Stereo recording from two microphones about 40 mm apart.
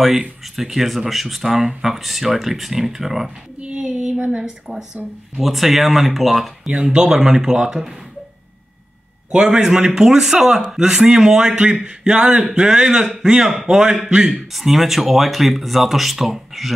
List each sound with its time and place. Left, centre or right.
0.0 s speech: centre
4.3 s speech: centre
6.7 s speech: right
9.3 s speech: centre
14.5 s speech: centre